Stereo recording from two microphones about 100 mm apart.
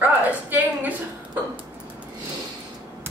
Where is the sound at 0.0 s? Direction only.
15° right (ahead or behind).